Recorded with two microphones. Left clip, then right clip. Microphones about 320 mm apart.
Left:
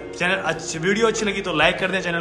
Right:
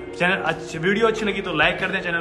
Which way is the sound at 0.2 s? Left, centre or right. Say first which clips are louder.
Right 1 dB; centre.